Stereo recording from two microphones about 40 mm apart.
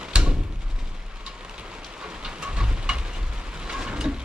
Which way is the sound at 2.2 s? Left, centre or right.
Right.